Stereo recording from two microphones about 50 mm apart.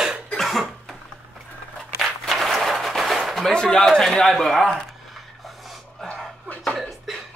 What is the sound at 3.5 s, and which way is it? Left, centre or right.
A man's voice, centre.